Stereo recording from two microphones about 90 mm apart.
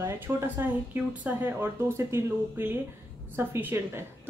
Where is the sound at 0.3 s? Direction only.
25° right (ahead or behind).